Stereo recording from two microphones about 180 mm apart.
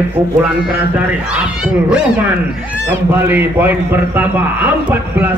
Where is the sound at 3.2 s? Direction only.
10° right (ahead or behind).